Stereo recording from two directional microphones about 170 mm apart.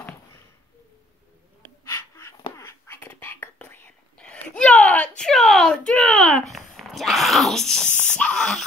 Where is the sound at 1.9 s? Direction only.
15° left (ahead or behind).